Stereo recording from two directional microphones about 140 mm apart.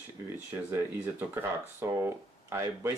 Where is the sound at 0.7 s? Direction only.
15° right (ahead or behind).